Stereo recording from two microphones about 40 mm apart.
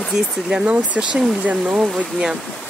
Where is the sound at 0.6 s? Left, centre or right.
Right.